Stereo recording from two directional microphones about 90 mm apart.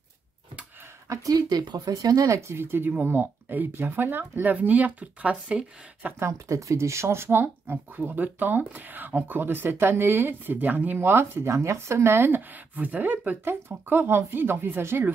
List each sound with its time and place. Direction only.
1.0 s speech: 40° right (ahead or behind); by 6.1 s 15° right (ahead or behind)
6.1 s speech: 35° right (ahead or behind)